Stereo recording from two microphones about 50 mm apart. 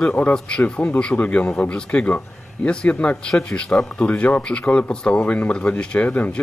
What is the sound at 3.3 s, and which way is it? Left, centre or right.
Speech, centre.